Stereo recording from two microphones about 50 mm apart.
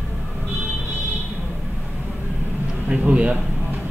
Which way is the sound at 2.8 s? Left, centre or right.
Right.